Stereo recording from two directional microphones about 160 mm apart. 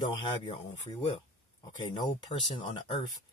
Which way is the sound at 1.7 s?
30° left (ahead or behind).